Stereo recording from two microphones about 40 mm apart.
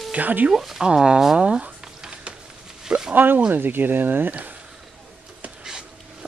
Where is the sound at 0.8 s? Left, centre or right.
Centre.